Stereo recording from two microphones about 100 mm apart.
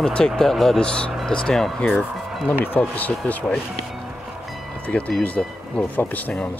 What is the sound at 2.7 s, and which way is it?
Speech, 15° left (ahead or behind).